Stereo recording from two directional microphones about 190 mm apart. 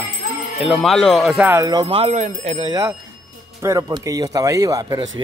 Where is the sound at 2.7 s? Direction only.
15° right (ahead or behind).